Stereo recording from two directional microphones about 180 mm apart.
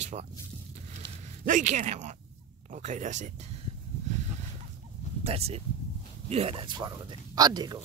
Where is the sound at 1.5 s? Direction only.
45° right (ahead or behind).